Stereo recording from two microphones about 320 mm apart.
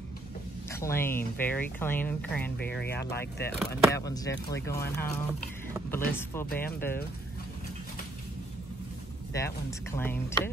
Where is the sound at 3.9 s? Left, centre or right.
Centre.